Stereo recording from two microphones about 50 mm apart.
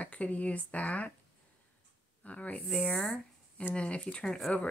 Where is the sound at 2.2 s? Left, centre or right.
Left.